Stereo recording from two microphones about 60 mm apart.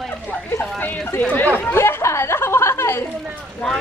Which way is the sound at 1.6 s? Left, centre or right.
Left.